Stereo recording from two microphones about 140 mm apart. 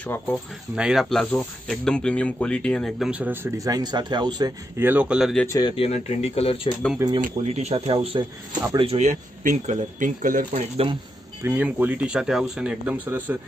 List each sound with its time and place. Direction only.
0.0 s speech: 10° left (ahead or behind)
0.7 s speech: 5° right (ahead or behind)
3.1 s speech: 10° right (ahead or behind); by 4.6 s 30° right (ahead or behind)
4.7 s speech: 15° right (ahead or behind)
5.5 s speech: 35° left (ahead or behind)
7.4 s speech: 50° right (ahead or behind); by 10.4 s 75° right (ahead or behind)
10.5 s speech: 50° right (ahead or behind)
11.4 s speech: 15° right (ahead or behind)